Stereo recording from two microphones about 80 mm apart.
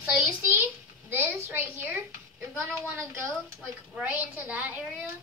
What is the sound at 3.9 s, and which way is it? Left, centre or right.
Speech, centre.